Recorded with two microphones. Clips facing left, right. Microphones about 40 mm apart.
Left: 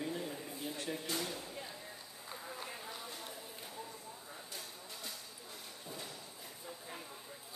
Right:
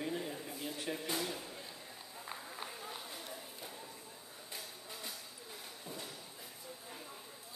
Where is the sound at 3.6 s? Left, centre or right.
Centre.